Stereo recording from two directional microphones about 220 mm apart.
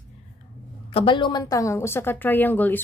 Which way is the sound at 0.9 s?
25° left (ahead or behind).